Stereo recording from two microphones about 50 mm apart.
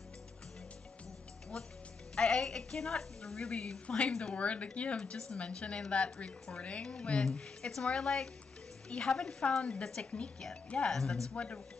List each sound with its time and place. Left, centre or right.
1.5 s a woman's voice: centre
10.9 s a woman's voice: centre
11.3 s a woman's voice: left